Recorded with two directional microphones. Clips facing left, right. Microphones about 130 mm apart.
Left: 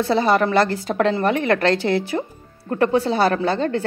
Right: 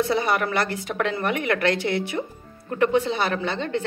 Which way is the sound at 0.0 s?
30° left (ahead or behind).